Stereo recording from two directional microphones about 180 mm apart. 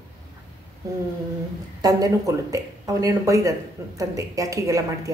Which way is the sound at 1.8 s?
20° right (ahead or behind).